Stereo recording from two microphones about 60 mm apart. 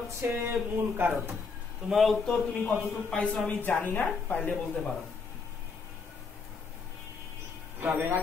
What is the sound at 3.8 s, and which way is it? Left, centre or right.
Speech, left.